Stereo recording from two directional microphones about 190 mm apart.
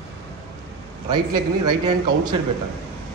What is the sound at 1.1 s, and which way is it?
A man's voice, 20° right (ahead or behind).